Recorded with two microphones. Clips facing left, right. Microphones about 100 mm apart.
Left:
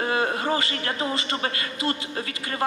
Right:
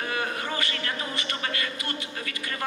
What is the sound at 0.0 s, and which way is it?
A man's voice, 30° left (ahead or behind).